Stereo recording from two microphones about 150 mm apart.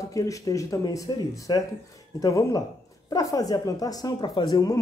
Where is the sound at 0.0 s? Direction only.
20° left (ahead or behind).